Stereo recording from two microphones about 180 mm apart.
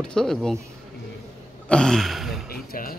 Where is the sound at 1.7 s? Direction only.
5° left (ahead or behind).